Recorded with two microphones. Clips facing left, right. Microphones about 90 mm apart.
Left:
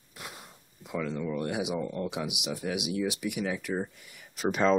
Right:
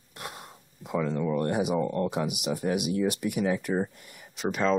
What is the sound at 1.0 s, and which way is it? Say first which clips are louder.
Speech: right 4 dB; 40° right (ahead or behind).